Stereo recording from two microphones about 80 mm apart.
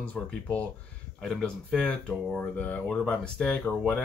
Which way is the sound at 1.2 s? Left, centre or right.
Centre.